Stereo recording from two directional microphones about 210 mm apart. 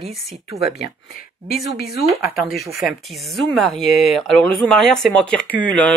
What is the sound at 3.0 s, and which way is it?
Speech, centre (ahead or behind).